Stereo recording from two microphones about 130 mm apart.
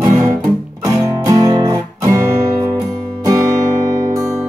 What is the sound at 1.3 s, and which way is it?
Music, 30° right (ahead or behind).